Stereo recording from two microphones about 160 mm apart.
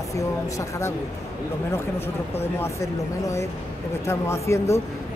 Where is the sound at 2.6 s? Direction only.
20° left (ahead or behind).